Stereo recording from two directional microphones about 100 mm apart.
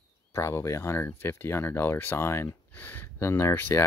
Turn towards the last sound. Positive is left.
turn(degrees=25)  # may be behind; listen again after turning